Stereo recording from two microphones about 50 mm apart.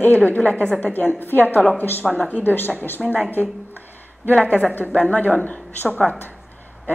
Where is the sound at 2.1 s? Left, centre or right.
Left.